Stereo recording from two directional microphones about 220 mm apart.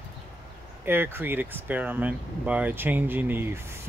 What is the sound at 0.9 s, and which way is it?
Speech, 10° right (ahead or behind).